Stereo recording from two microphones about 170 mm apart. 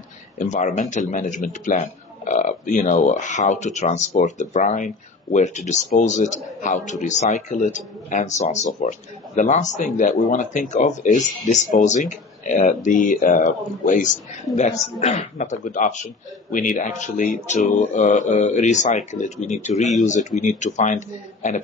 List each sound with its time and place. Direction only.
0.4 s a man's voice: 45° left (ahead or behind)